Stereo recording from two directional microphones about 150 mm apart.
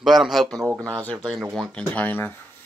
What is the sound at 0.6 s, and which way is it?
Speech, 20° right (ahead or behind).